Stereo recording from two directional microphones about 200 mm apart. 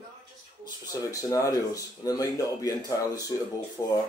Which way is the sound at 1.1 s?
15° left (ahead or behind).